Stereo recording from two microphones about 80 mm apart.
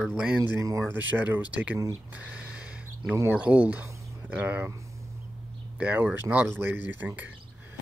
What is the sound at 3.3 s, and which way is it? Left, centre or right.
Speech, centre.